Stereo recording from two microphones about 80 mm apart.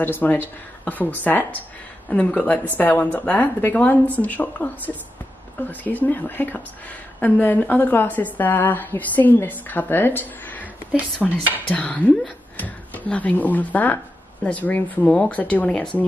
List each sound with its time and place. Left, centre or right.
0.0 s a woman's voice: left
11.2 s speech: centre
11.7 s speech: centre